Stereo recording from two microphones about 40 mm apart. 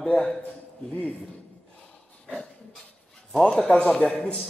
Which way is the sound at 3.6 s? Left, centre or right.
Left.